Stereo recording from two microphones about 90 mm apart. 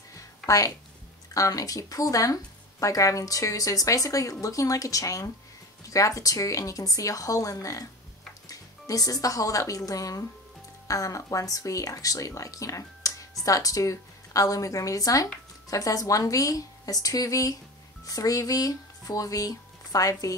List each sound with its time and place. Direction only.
0.5 s a woman's voice: 40° left (ahead or behind)